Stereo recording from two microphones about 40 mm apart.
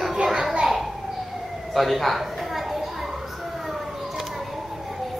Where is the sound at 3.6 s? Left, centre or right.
Centre.